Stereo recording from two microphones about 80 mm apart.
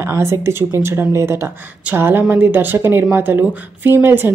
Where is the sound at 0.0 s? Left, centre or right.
Right.